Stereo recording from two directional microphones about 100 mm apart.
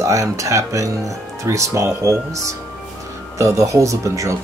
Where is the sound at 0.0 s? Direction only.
30° right (ahead or behind).